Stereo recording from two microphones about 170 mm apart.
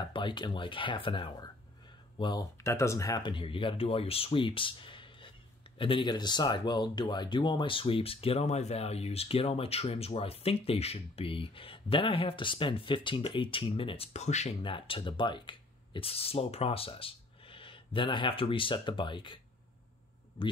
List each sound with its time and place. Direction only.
0.0 s speech: 30° left (ahead or behind)
2.6 s speech: 15° left (ahead or behind)